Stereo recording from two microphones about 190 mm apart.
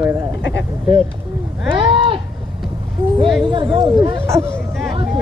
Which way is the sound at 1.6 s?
25° right (ahead or behind).